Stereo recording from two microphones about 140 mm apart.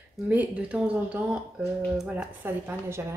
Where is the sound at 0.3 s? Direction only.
10° right (ahead or behind).